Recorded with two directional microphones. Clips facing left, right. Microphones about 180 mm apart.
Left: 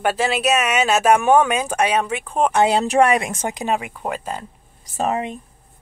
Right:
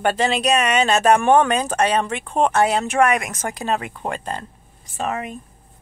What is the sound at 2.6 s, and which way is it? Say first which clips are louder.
Speech: left 2 dB; 35° left (ahead or behind).